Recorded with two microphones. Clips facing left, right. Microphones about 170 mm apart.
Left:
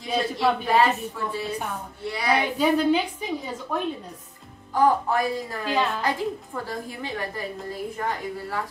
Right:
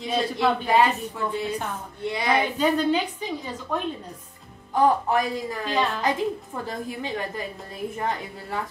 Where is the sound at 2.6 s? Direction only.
10° left (ahead or behind).